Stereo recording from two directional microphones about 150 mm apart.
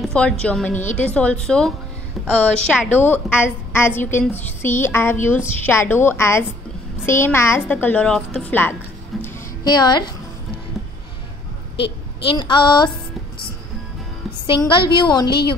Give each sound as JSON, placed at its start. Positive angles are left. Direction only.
{"t": 0.0, "sound": "a woman's voice", "side_deg": 5}
{"t": 9.1, "sound": "music", "side_deg": 0}
{"t": 9.7, "sound": "a woman's voice", "side_deg": 30}
{"t": 11.8, "sound": "a woman's voice", "side_deg": 35}
{"t": 14.4, "sound": "a woman's voice", "side_deg": 30}